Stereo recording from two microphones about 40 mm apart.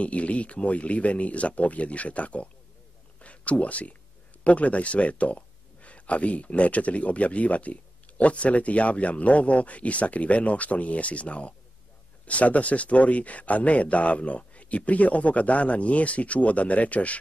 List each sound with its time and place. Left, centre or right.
0.0 s speech: left
3.2 s a sound: left
4.5 s speech: left